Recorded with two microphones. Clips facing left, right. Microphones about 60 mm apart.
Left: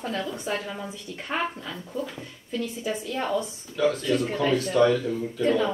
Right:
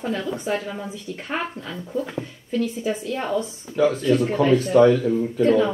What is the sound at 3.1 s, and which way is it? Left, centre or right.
Speech, centre.